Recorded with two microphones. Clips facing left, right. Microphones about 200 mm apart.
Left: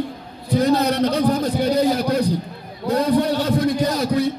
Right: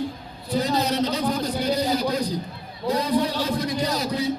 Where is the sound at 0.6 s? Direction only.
60° left (ahead or behind).